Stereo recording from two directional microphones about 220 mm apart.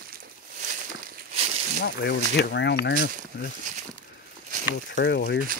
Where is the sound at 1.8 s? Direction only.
50° left (ahead or behind).